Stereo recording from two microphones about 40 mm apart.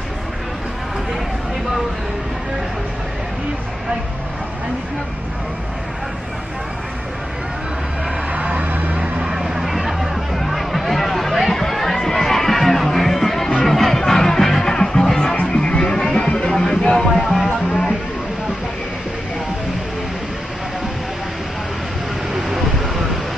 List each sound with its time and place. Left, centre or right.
8.3 s vehicle: right
8.9 s vehicle: right
9.3 s music: centre
17.1 s music: centre
17.6 s music: centre